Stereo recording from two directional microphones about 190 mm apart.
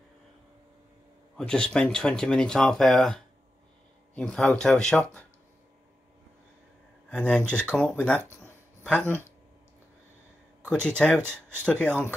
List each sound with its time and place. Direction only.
1.3 s speech: 5° left (ahead or behind)
7.1 s speech: 5° left (ahead or behind)
11.0 s speech: 5° left (ahead or behind)